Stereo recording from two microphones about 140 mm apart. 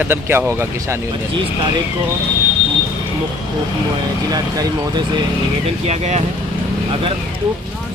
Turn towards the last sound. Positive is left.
turn(degrees=-50)  # may be behind; listen again after turning